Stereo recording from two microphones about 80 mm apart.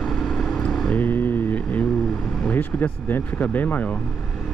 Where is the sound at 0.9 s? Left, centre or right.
Left.